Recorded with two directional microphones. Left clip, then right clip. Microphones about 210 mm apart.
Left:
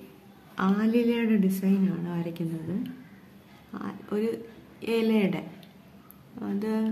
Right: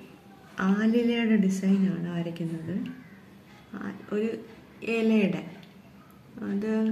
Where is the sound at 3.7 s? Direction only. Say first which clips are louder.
Even; 30° left (ahead or behind).